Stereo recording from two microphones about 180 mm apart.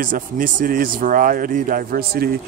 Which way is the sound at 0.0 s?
50° right (ahead or behind).